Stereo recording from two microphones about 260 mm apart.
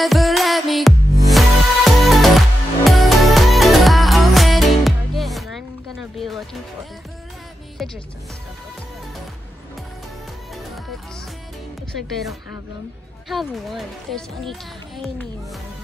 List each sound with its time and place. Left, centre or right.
0.0 s music: centre
7.8 s music: centre
13.3 s speech: centre